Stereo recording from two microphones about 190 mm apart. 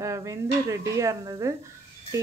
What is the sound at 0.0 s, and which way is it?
Speech, 15° right (ahead or behind).